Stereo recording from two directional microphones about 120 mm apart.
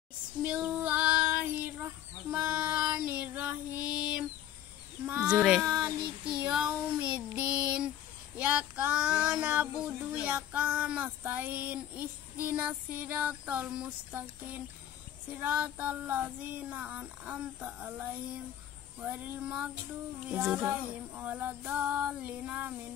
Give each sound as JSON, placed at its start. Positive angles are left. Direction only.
{"t": 0.4, "sound": "child singing", "side_deg": -15}
{"t": 2.3, "sound": "female singing", "side_deg": -10}
{"t": 5.0, "sound": "speech", "side_deg": -10}
{"t": 6.3, "sound": "child singing", "side_deg": -10}